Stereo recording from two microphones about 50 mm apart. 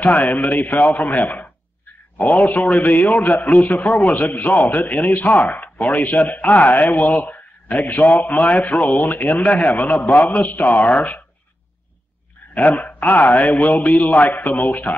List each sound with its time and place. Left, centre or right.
0.0 s a man's voice: left
12.5 s a man's voice: left